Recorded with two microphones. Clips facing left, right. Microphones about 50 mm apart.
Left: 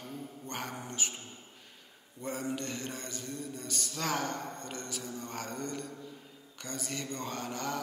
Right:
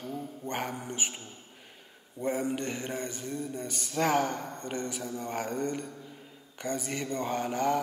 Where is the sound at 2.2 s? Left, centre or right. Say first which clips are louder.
Right 6 dB; right.